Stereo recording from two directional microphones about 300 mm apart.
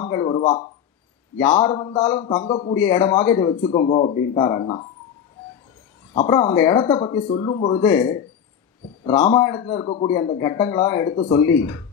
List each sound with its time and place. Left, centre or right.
0.1 s a sound: centre
1.4 s a man's voice: centre
6.1 s speech: centre
11.1 s speech: centre
11.4 s speech: centre